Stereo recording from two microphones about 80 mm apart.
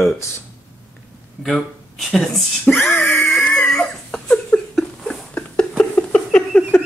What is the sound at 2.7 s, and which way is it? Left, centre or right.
Speech, centre.